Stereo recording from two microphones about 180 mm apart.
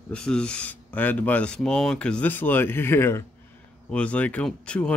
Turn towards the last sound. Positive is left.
turn(degrees=5)  # may be behind; listen again after turning